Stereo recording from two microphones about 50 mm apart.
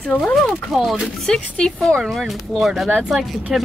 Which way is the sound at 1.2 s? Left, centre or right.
Centre.